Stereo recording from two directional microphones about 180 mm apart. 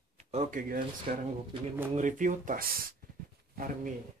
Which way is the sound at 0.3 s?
40° right (ahead or behind).